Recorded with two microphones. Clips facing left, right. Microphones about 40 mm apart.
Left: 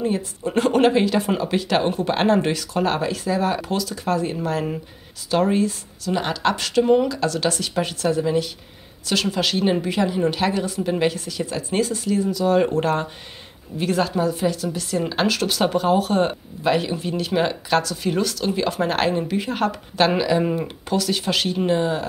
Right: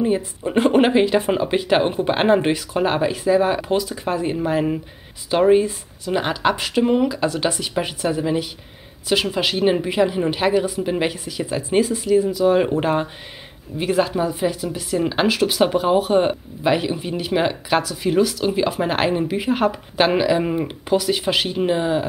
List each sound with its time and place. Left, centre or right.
0.0 s speech: centre